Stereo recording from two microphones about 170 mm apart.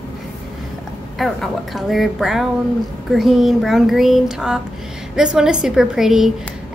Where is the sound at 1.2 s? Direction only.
Centre (ahead or behind).